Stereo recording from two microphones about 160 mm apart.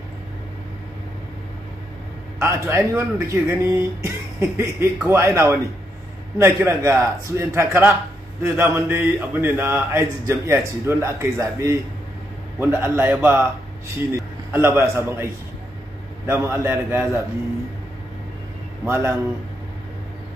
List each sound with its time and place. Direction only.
2.4 s a man's voice: 15° right (ahead or behind)
18.9 s speech: 15° right (ahead or behind)